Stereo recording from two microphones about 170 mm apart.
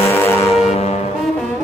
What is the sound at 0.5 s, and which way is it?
Music, 40° left (ahead or behind).